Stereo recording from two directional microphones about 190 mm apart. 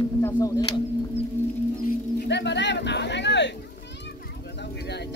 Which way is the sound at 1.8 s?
65° left (ahead or behind).